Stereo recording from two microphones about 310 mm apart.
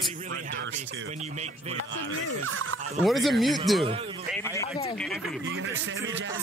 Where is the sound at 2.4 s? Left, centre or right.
Right.